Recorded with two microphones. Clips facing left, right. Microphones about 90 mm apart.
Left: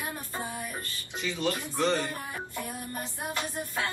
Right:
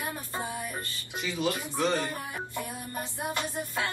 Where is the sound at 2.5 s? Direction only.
20° right (ahead or behind).